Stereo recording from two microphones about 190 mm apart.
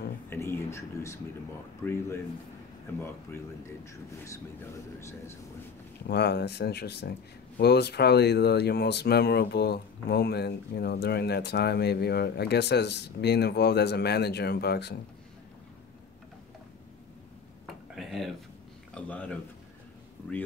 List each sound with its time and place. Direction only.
0.3 s speech: 15° left (ahead or behind)
2.9 s speech: 10° left (ahead or behind)
6.0 s speech: 60° left (ahead or behind)
17.9 s a sound: centre (ahead or behind)
18.9 s speech: 5° left (ahead or behind)